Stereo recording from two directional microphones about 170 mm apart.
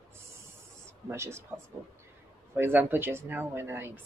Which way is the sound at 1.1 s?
15° right (ahead or behind).